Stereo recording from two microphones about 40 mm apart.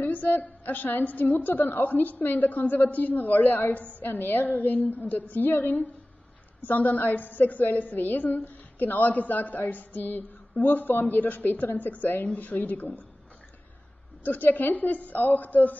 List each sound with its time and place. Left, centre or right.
0.0 s a woman's voice: left
3.7 s a woman's voice: left
14.2 s a woman's voice: left